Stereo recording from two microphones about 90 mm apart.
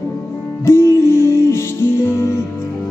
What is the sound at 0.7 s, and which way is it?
Music, 30° left (ahead or behind).